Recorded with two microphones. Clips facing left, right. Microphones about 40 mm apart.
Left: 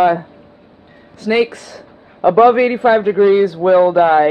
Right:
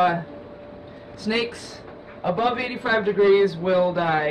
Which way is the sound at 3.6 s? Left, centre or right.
Left.